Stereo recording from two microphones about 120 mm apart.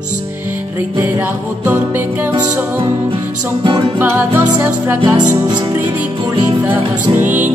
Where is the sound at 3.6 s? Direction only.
40° right (ahead or behind).